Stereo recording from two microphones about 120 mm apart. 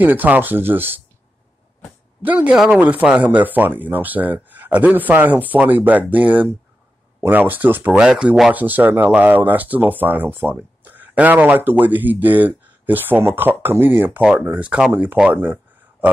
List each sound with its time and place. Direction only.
0.0 s speech: 15° right (ahead or behind)
2.2 s speech: 10° right (ahead or behind)
15.1 s a sound: 15° right (ahead or behind)